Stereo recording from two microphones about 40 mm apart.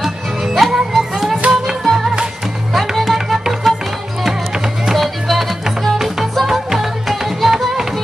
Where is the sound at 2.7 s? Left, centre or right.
Centre.